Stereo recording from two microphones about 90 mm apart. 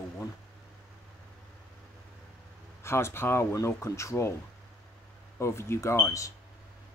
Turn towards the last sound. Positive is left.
turn(degrees=35)  # may be behind; listen again after turning